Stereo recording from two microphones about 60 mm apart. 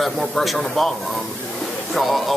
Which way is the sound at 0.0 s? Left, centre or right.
Centre.